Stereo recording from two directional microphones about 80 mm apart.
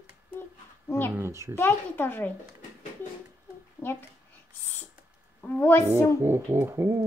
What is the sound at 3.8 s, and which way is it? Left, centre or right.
Speech, left.